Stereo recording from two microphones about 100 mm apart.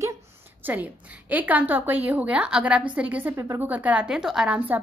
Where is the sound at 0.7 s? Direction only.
15° right (ahead or behind).